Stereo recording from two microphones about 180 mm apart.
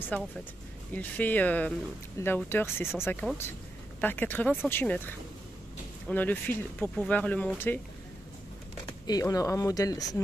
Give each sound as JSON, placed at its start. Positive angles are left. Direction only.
{"t": 0.1, "sound": "speech", "side_deg": 10}
{"t": 9.0, "sound": "speech", "side_deg": 20}